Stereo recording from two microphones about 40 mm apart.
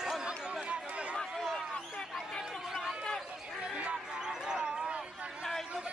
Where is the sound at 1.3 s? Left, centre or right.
Centre.